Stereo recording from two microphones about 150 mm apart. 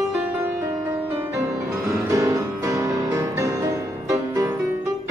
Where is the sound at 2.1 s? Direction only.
20° right (ahead or behind).